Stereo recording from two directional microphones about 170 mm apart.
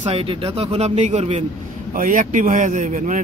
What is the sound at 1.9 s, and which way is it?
A man's voice, 50° right (ahead or behind).